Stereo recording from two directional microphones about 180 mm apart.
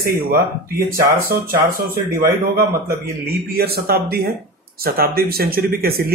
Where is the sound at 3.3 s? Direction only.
60° right (ahead or behind).